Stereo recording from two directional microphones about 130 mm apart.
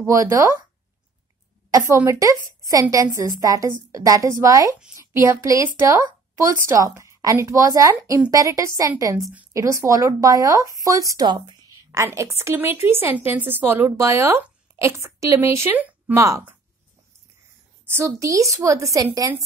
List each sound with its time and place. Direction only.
0.0 s a woman's voice: 25° right (ahead or behind)
1.7 s a woman's voice: 25° right (ahead or behind)
12.0 s a woman's voice: 20° right (ahead or behind)
16.2 s a woman's voice: 25° right (ahead or behind)
17.8 s a woman's voice: 20° right (ahead or behind)